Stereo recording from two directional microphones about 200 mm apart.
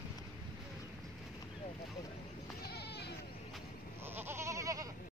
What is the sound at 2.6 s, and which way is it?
Goat, 55° left (ahead or behind).